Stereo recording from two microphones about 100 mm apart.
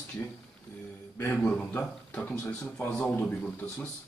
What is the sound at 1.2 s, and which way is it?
A man's voice, 20° left (ahead or behind).